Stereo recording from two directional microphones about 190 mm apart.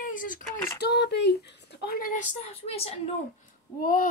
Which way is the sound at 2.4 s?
30° left (ahead or behind).